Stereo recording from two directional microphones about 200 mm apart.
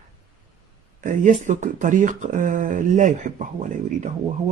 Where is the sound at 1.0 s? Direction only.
40° right (ahead or behind).